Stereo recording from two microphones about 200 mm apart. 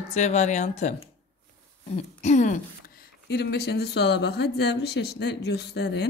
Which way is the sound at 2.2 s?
35° left (ahead or behind).